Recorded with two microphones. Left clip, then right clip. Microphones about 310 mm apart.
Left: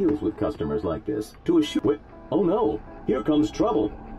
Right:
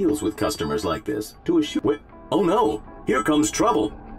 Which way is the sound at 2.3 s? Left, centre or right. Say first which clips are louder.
Right 3 dB; right.